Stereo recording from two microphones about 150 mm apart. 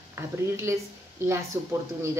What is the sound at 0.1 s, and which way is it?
Speech, 15° right (ahead or behind).